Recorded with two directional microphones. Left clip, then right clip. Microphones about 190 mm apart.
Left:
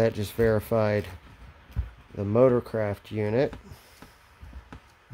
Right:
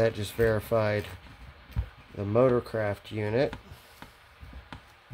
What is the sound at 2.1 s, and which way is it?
Speech, 35° left (ahead or behind).